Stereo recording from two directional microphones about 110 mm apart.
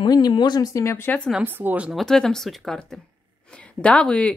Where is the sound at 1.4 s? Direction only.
15° right (ahead or behind).